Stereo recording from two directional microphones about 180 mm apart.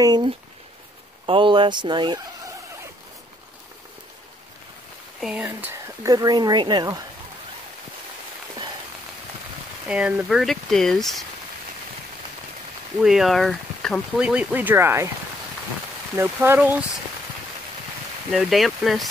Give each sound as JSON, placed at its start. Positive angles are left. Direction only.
{"t": 0.0, "sound": "speech", "side_deg": -25}
{"t": 5.2, "sound": "speech", "side_deg": -5}
{"t": 9.8, "sound": "speech", "side_deg": -5}
{"t": 13.0, "sound": "speech", "side_deg": 0}
{"t": 16.2, "sound": "speech", "side_deg": -15}
{"t": 18.3, "sound": "speech", "side_deg": 0}